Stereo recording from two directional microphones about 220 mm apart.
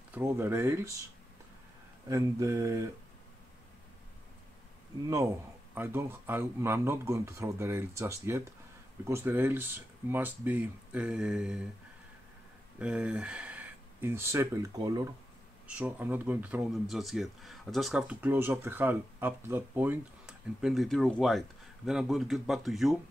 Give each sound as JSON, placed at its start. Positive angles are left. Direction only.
{"t": 0.1, "sound": "speech", "side_deg": -10}
{"t": 2.0, "sound": "speech", "side_deg": -15}
{"t": 5.8, "sound": "speech", "side_deg": -10}
{"t": 12.7, "sound": "speech", "side_deg": -5}